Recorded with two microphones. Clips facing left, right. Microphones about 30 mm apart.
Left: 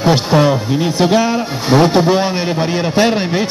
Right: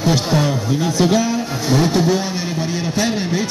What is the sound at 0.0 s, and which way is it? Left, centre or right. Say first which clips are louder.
A man's voice: left 5 dB; left.